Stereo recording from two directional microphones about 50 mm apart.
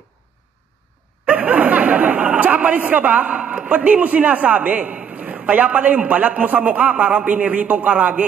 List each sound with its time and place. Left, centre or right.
1.2 s speech: right